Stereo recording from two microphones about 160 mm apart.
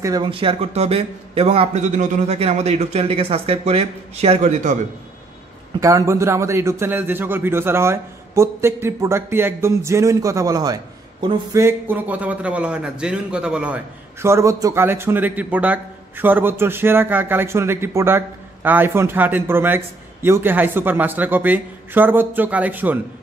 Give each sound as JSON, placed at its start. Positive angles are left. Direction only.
{"t": 0.0, "sound": "speech", "side_deg": -25}
{"t": 0.3, "sound": "a man's voice", "side_deg": -35}
{"t": 5.8, "sound": "a man's voice", "side_deg": -20}
{"t": 11.5, "sound": "a man's voice", "side_deg": -15}
{"t": 14.2, "sound": "a man's voice", "side_deg": -20}